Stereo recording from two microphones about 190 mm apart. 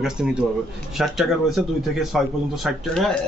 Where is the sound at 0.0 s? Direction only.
5° right (ahead or behind).